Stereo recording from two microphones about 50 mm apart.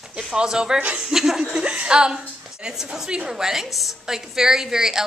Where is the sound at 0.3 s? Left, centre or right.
Centre.